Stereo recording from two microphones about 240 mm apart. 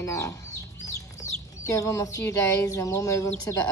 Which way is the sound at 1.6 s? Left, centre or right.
Centre.